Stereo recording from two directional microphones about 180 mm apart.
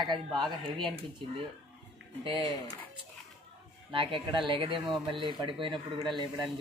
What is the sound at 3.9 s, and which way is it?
Speech, 30° right (ahead or behind).